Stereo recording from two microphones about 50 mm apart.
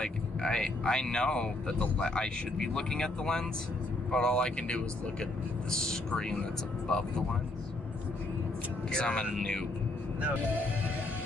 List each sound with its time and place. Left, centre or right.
0.0 s speech: centre
8.9 s speech: centre